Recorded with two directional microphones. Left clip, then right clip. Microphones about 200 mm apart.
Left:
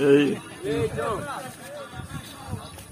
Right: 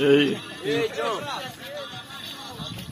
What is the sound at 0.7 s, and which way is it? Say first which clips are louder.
Speech: right 1 dB; 45° left (ahead or behind).